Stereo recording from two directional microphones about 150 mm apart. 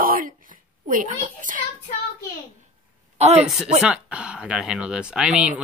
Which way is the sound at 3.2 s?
45° right (ahead or behind).